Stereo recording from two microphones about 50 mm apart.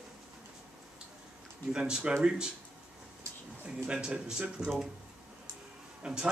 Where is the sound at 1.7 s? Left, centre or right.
Centre.